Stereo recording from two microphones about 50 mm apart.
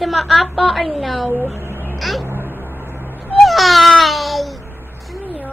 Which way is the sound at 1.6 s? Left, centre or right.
Right.